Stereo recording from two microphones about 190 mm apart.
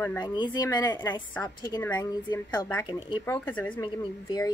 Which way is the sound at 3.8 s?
20° left (ahead or behind).